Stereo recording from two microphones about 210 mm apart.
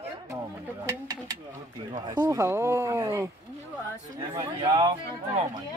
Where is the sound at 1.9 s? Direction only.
20° right (ahead or behind).